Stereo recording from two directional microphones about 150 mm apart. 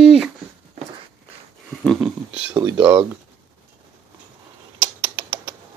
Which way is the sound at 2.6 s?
15° right (ahead or behind).